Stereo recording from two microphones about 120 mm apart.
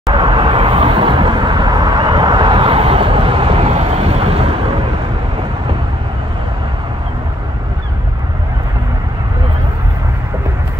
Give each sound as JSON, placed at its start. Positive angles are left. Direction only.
{"t": 0.1, "sound": "vehicle", "side_deg": -40}